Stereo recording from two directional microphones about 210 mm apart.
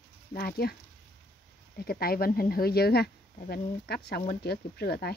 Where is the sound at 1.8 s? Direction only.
45° left (ahead or behind).